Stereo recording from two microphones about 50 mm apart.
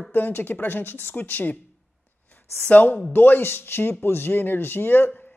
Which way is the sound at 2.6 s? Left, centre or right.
Left.